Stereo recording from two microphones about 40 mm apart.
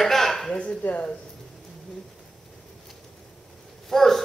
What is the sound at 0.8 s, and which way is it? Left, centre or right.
Speech, left.